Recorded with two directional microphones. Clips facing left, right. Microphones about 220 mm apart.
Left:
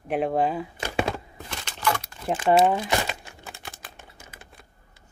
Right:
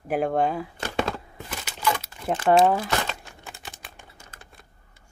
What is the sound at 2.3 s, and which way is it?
Speech, 10° left (ahead or behind).